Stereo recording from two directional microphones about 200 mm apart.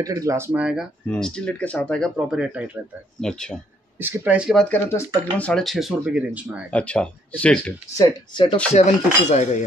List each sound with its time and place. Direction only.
0.0 s speech: 15° right (ahead or behind); by 3.5 s 5° left (ahead or behind)
4.0 s speech: 10° right (ahead or behind)
4.6 s speech: 10° left (ahead or behind); by 6.6 s 5° right (ahead or behind)
6.7 s speech: 5° left (ahead or behind)
8.0 s speech: 20° left (ahead or behind)
9.3 s speech: 35° left (ahead or behind)